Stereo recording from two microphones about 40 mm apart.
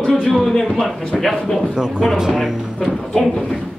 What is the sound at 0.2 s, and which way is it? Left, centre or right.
Speech, centre.